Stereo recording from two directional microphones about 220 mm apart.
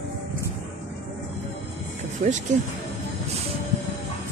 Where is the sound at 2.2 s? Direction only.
35° right (ahead or behind).